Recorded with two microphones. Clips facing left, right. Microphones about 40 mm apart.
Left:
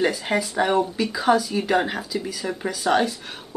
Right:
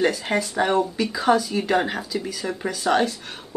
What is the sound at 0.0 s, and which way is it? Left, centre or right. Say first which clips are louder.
Speech: even; centre.